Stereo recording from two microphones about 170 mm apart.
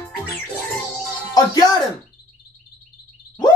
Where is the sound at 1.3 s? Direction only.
25° left (ahead or behind).